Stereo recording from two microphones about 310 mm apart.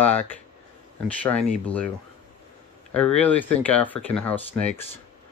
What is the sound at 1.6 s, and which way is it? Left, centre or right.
Speech, centre.